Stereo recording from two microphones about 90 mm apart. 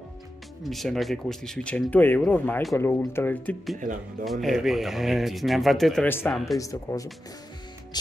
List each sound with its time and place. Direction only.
0.7 s speech: centre (ahead or behind); by 3.5 s 25° left (ahead or behind)
4.2 s speech: centre (ahead or behind)
6.0 s speech: 25° left (ahead or behind)
6.3 s speech: centre (ahead or behind)
6.6 s speech: 40° left (ahead or behind)
7.9 s music: 50° left (ahead or behind)